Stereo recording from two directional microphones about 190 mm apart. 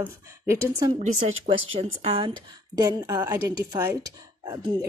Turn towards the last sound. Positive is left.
turn(degrees=-20)  # may be behind; listen again after turning